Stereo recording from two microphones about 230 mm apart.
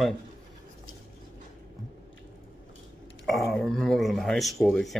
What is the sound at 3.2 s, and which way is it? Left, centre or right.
Speech, centre.